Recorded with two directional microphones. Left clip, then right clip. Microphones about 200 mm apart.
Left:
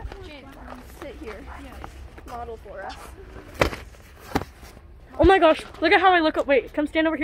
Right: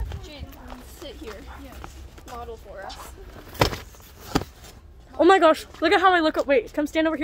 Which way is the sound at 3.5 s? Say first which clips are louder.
Even; 30° right (ahead or behind).